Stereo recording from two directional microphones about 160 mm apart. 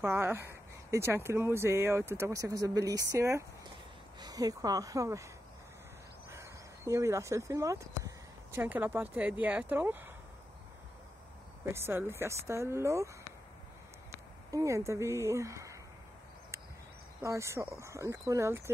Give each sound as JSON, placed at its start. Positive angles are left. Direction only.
{"t": 0.0, "sound": "speech", "side_deg": -15}
{"t": 6.3, "sound": "speech", "side_deg": -20}
{"t": 11.6, "sound": "speech", "side_deg": -15}
{"t": 14.5, "sound": "speech", "side_deg": -20}
{"t": 17.2, "sound": "speech", "side_deg": -20}